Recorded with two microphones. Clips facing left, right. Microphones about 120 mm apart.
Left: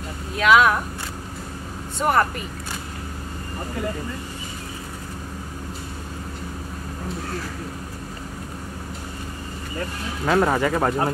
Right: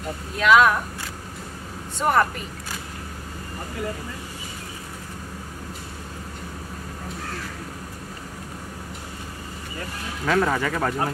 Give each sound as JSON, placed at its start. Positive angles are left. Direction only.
{"t": 0.4, "sound": "speech", "side_deg": 5}
{"t": 2.0, "sound": "speech", "side_deg": 0}
{"t": 10.2, "sound": "speech", "side_deg": 30}